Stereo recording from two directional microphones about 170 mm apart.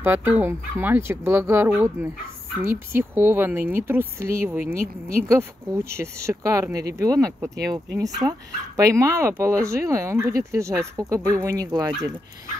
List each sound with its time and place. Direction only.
0.0 s speech: 10° right (ahead or behind)